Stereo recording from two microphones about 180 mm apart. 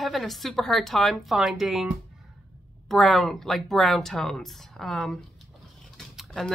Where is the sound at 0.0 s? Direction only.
Centre (ahead or behind).